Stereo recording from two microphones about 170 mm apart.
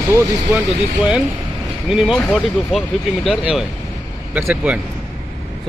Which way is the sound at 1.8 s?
Centre (ahead or behind).